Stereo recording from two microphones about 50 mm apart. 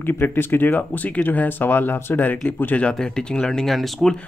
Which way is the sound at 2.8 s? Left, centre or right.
Centre.